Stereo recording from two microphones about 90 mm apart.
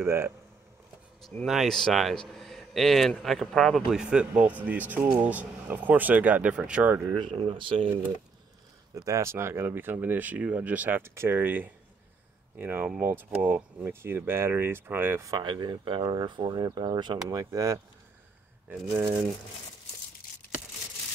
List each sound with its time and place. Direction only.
0.0 s speech: 30° right (ahead or behind)
1.2 s a man's voice: centre (ahead or behind); by 7.1 s 20° right (ahead or behind)
7.2 s speech: 70° right (ahead or behind)
8.9 s speech: 40° right (ahead or behind)
15.4 s speech: 55° right (ahead or behind)
16.5 s speech: 45° right (ahead or behind)
17.3 s speech: 40° right (ahead or behind)